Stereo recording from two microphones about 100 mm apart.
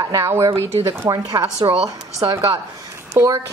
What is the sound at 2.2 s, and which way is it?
Speech, 50° right (ahead or behind).